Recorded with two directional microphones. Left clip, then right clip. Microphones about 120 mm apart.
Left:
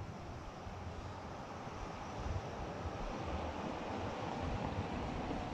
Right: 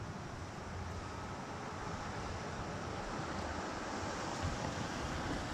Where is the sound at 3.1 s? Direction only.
20° left (ahead or behind).